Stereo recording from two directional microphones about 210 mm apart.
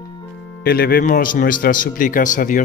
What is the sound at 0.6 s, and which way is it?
Speech, 45° left (ahead or behind).